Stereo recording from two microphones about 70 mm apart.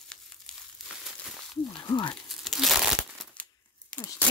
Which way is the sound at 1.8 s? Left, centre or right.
Left.